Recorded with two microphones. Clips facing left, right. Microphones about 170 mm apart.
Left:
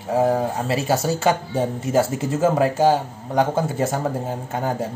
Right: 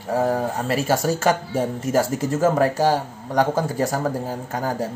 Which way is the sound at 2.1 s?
40° right (ahead or behind).